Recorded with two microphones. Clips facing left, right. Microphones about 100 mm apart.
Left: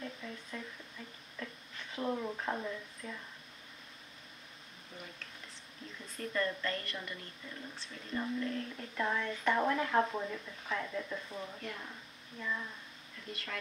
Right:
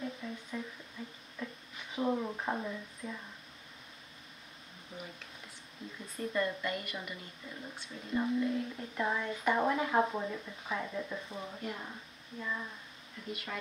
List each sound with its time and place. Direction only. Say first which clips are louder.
0.0 s a sound: right 4 dB; 10° right (ahead or behind)
1.4 s speech: right 2 dB; 10° right (ahead or behind)
6.1 s a woman's voice: right 2 dB; 15° right (ahead or behind)